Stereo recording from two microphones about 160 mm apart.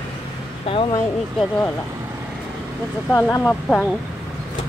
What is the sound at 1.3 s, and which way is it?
Speech, 10° left (ahead or behind).